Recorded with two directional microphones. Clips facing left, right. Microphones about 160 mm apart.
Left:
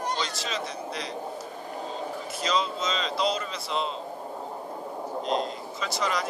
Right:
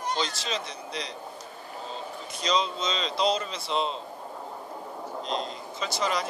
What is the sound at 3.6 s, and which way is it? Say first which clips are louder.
Speech: right 2 dB; 30° right (ahead or behind).